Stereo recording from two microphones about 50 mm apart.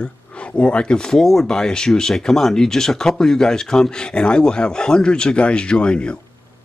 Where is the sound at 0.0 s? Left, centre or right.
Left.